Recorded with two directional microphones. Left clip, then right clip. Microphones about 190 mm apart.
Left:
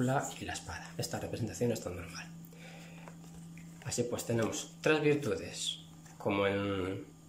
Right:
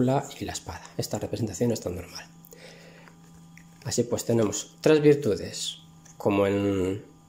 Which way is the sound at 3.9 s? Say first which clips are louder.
Right 9 dB; 25° right (ahead or behind).